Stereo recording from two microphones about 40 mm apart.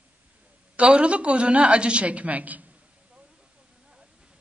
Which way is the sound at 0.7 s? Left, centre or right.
Right.